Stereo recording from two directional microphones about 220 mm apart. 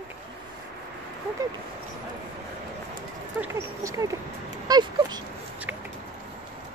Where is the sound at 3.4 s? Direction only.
15° right (ahead or behind).